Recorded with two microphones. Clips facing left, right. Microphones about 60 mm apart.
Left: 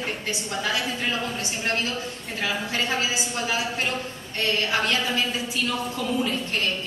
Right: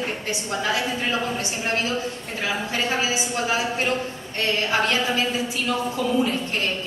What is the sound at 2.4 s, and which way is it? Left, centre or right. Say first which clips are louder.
Speech: right 1 dB; centre.